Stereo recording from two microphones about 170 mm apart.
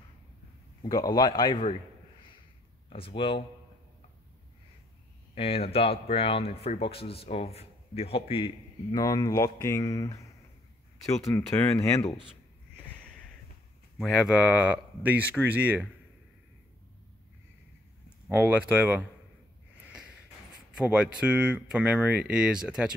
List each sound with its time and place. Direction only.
0.8 s speech: 20° left (ahead or behind)
3.2 s speech: 30° left (ahead or behind)
5.3 s speech: 35° left (ahead or behind); by 10.2 s 20° left (ahead or behind)
11.2 s speech: 15° left (ahead or behind)
13.9 s speech: 5° right (ahead or behind)
18.3 s speech: 10° right (ahead or behind)
19.9 s a sound: 5° right (ahead or behind)
20.7 s speech: 5° right (ahead or behind)